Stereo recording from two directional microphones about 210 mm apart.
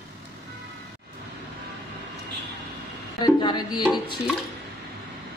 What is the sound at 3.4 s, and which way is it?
Music, 20° left (ahead or behind).